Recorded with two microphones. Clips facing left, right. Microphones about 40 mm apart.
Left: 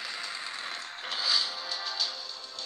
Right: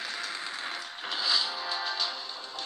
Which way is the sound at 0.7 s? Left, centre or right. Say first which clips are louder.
Right 1 dB; centre.